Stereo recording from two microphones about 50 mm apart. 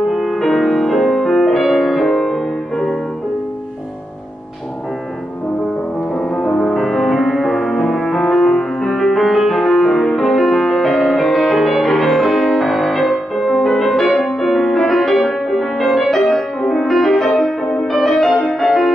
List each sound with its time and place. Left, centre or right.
0.1 s music: centre
6.1 s music: centre
6.7 s music: centre